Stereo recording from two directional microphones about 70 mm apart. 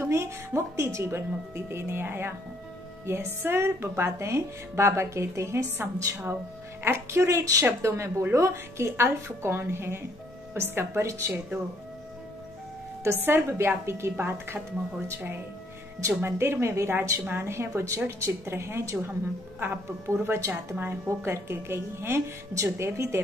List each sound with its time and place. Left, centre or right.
0.0 s a woman's voice: right
13.2 s a woman's voice: right
20.3 s a woman's voice: right